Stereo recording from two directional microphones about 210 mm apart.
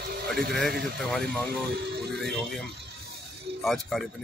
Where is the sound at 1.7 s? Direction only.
50° right (ahead or behind).